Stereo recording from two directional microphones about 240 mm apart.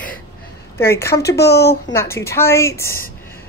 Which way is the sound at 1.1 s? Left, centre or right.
Left.